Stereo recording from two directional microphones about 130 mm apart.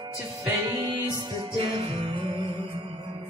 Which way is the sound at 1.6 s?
45° right (ahead or behind).